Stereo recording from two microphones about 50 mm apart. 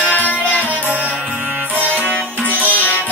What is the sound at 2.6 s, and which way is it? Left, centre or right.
Music, left.